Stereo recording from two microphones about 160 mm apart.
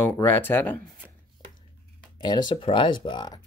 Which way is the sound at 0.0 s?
15° left (ahead or behind).